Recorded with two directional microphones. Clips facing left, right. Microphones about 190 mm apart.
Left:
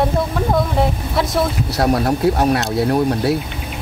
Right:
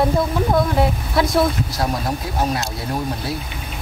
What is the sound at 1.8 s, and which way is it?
Speech, 65° left (ahead or behind).